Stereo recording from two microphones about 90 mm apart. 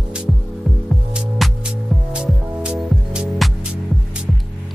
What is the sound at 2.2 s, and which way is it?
Music, 10° right (ahead or behind).